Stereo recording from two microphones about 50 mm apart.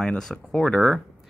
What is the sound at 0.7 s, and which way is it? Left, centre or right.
Speech, centre.